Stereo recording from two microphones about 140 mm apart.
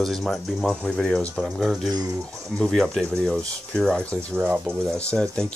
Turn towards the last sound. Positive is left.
turn(degrees=5)  # may be behind; listen again after turning